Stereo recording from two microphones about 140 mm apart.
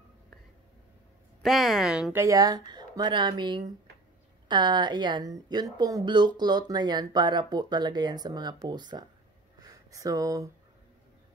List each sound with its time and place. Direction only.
1.4 s speech: centre (ahead or behind)
2.1 s speech: 25° right (ahead or behind)
9.6 s a sound: 25° right (ahead or behind)